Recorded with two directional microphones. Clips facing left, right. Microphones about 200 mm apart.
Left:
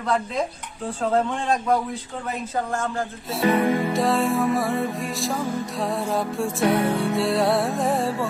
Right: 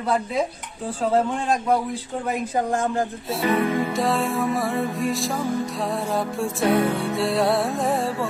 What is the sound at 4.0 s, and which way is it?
Music, centre (ahead or behind).